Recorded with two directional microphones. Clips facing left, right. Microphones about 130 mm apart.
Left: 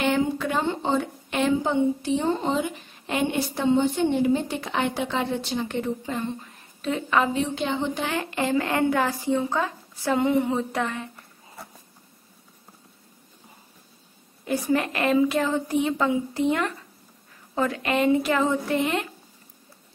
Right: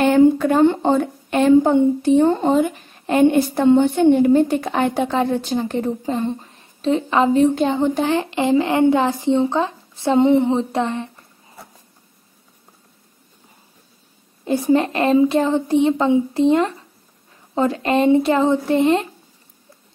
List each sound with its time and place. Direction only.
0.0 s a woman's voice: 45° right (ahead or behind); by 7.2 s 30° right (ahead or behind)
7.3 s a woman's voice: 45° right (ahead or behind)
8.1 s speech: 25° right (ahead or behind)
14.4 s speech: 25° right (ahead or behind)